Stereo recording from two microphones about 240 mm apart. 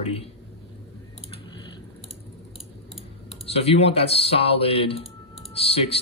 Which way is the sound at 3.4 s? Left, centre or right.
Left.